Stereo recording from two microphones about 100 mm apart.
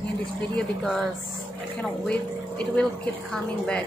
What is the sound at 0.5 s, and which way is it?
A woman's voice, 5° left (ahead or behind).